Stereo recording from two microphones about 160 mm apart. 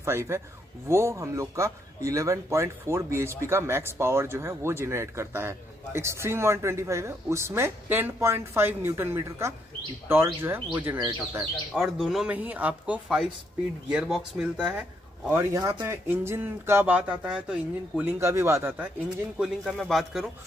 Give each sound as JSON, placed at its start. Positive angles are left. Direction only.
{"t": 0.0, "sound": "speech", "side_deg": -15}
{"t": 18.2, "sound": "speech", "side_deg": -15}
{"t": 19.3, "sound": "speech", "side_deg": 0}